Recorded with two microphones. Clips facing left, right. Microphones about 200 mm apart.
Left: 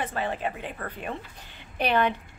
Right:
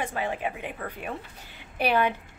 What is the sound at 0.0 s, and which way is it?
A woman's voice, 10° right (ahead or behind).